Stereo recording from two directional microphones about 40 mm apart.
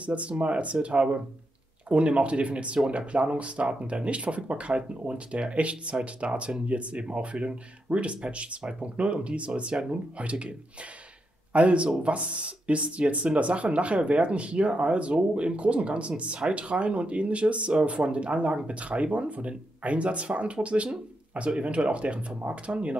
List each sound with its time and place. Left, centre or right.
0.0 s speech: right
11.5 s speech: right